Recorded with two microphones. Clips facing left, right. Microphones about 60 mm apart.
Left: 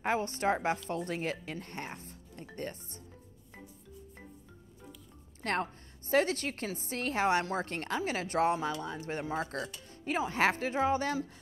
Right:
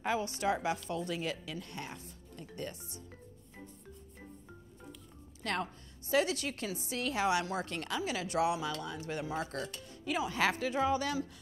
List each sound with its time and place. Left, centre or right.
0.0 s a woman's voice: left
5.4 s a woman's voice: left